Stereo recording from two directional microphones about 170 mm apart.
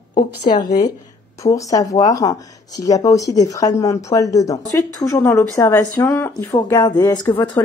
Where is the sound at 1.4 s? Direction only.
20° left (ahead or behind).